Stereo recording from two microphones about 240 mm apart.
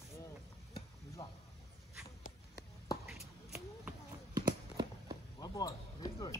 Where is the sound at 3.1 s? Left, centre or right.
Centre.